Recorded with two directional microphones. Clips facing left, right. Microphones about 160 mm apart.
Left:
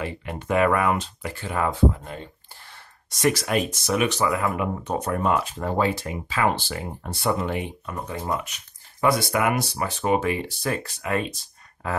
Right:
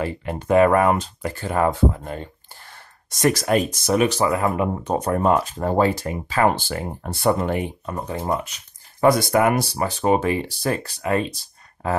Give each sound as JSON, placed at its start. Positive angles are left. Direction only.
{"t": 0.0, "sound": "speech", "side_deg": -35}
{"t": 3.2, "sound": "speech", "side_deg": -40}